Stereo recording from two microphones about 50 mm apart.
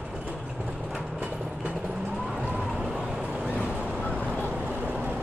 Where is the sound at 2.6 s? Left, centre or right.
Centre.